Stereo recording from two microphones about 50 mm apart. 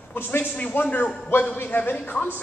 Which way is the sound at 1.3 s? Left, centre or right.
Left.